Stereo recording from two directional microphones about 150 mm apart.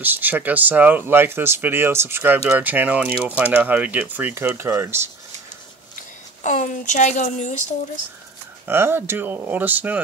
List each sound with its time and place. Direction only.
0.0 s speech: 10° right (ahead or behind)
6.4 s speech: 55° left (ahead or behind)
8.6 s speech: 15° right (ahead or behind)